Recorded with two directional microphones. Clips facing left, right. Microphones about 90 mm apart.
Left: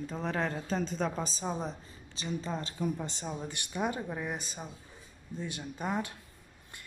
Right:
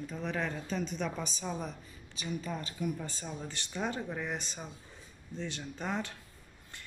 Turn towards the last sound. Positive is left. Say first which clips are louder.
# left 2 dB
turn(degrees=10)  # may be behind; listen again after turning